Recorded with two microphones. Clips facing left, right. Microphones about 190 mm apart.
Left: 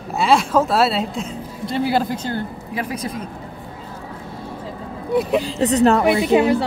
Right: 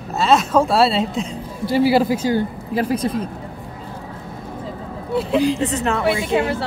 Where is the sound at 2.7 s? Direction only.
30° right (ahead or behind).